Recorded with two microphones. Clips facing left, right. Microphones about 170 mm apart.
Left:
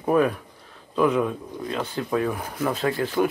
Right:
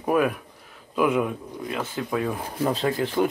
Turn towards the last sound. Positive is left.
turn(degrees=-20)  # may be behind; listen again after turning